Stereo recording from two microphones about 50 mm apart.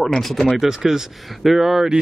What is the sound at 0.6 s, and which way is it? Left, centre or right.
Speech, centre.